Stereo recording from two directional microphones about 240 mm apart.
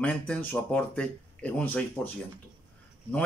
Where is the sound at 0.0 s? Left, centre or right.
Centre.